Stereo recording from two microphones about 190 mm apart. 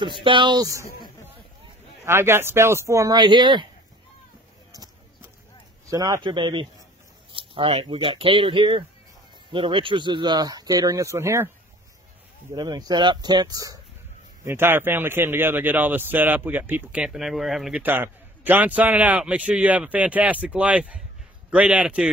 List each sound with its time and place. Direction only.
0.2 s speech: 25° right (ahead or behind)
2.0 s a man's voice: 10° right (ahead or behind)
5.9 s speech: 20° right (ahead or behind)
12.5 s a man's voice: 20° right (ahead or behind); by 22.1 s 5° right (ahead or behind)